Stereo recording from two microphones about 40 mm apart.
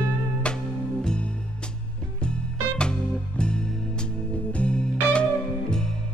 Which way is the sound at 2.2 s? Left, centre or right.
Left.